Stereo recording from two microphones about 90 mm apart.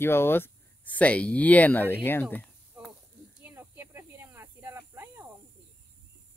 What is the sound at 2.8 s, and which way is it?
Snake, 15° right (ahead or behind).